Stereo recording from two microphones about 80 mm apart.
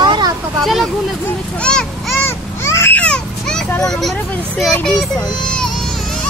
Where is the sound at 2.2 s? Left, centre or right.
Left.